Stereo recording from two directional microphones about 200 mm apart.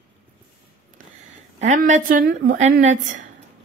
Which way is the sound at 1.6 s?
35° right (ahead or behind).